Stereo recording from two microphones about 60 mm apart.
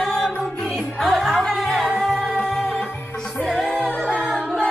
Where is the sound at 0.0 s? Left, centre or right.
Centre.